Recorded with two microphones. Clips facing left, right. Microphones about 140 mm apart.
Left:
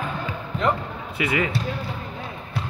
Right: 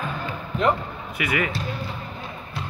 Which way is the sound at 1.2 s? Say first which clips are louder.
Left 2 dB; 25° left (ahead or behind).